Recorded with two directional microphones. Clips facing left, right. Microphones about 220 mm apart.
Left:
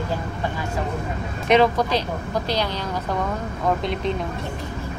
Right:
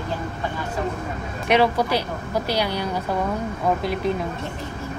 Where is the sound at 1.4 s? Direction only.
10° right (ahead or behind).